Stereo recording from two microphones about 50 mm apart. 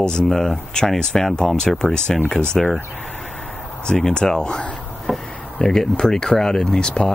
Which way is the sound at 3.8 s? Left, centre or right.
Centre.